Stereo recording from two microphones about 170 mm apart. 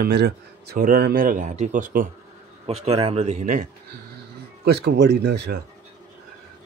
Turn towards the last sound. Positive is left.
turn(degrees=-75)  # may be behind; listen again after turning